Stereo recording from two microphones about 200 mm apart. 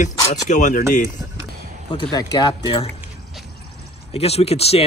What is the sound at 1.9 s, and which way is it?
Speech, 20° left (ahead or behind).